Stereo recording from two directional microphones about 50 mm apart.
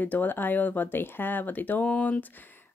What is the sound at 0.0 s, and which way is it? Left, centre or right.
Speech, left.